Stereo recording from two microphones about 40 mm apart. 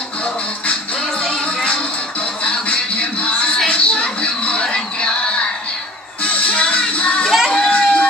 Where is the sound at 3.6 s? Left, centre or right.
Left.